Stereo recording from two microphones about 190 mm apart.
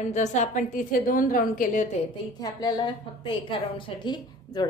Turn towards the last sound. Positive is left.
turn(degrees=25)  # may be behind; listen again after turning